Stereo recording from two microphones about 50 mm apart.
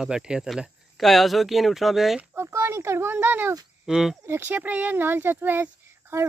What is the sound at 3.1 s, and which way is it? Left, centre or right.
Speech, right.